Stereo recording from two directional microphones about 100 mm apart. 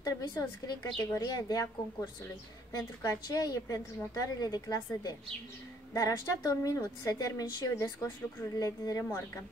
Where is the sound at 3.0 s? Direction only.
35° left (ahead or behind).